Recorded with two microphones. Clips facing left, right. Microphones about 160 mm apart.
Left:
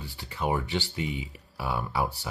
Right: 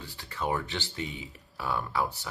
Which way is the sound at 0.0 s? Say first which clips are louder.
Left 2 dB; 15° left (ahead or behind).